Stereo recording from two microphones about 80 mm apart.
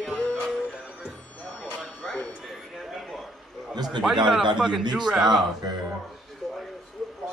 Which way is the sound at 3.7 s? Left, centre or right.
Right.